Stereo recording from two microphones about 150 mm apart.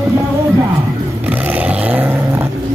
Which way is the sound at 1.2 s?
10° right (ahead or behind).